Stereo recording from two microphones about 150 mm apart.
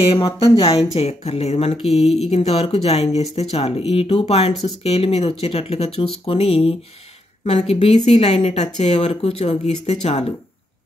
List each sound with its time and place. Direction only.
0.4 s speech: 40° left (ahead or behind)